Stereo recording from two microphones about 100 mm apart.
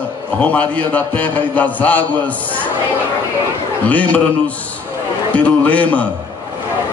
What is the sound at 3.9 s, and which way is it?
Speech, 15° left (ahead or behind).